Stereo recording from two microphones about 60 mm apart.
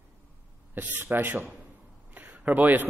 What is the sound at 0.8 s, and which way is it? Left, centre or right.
A man's voice, right.